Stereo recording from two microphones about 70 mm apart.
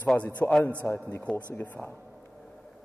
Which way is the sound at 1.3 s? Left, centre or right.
Left.